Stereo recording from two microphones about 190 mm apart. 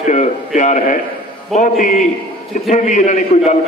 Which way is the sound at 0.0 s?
40° left (ahead or behind).